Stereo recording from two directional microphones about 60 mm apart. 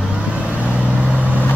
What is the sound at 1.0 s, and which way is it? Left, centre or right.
Vehicle, right.